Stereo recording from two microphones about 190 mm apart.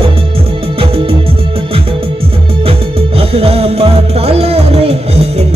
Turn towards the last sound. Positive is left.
turn(degrees=-35)  # may be behind; listen again after turning